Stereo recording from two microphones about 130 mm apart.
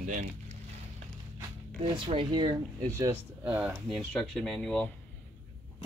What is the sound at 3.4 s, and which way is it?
Speech, 10° right (ahead or behind).